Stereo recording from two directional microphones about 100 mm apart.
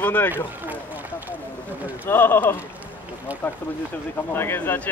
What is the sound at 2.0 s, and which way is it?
Speech, 20° left (ahead or behind).